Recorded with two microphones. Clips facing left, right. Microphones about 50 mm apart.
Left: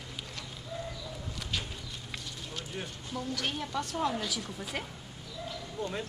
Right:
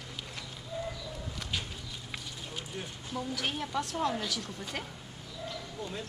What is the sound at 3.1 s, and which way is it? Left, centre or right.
A woman's voice, centre.